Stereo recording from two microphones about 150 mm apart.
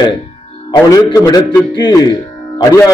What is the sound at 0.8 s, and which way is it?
Speech, 25° left (ahead or behind).